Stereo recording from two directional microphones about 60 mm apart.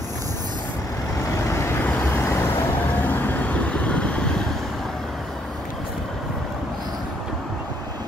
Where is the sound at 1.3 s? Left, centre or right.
Left.